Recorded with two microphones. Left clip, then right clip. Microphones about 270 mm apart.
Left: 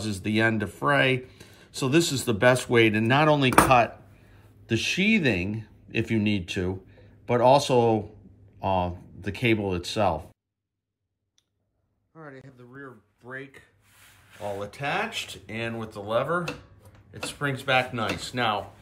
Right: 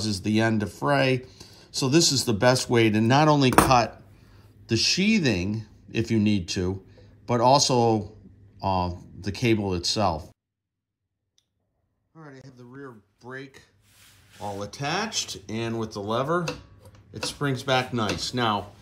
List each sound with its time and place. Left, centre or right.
0.0 s speech: centre
4.6 s speech: centre
12.1 s speech: centre
13.8 s a sound: centre
14.6 s speech: centre